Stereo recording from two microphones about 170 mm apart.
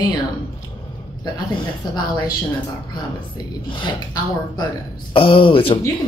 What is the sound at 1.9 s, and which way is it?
Speech, 25° left (ahead or behind).